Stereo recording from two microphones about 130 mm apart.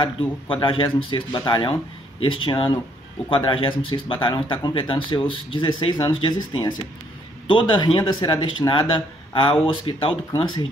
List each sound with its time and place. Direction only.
0.0 s speech: 40° left (ahead or behind)